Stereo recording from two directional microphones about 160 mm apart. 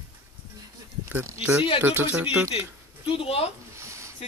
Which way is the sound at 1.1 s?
15° right (ahead or behind).